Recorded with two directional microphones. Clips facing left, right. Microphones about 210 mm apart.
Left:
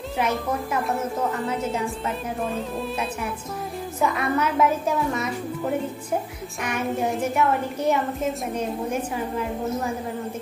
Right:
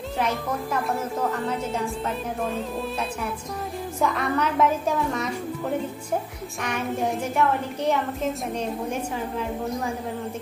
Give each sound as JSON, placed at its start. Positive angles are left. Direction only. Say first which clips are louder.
{"t": 4.0, "sound": "a woman's voice", "louder": "left 1 dB", "side_deg": 5}
{"t": 6.6, "sound": "a woman's voice", "louder": "left 1 dB", "side_deg": 5}